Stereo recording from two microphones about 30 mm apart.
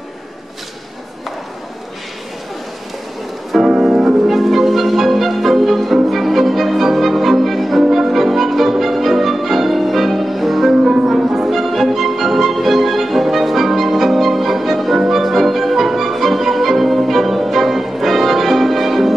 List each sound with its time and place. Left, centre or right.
3.8 s music: centre
10.8 s music: centre